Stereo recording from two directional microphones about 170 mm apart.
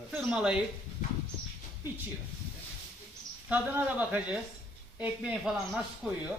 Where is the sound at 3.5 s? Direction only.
10° right (ahead or behind).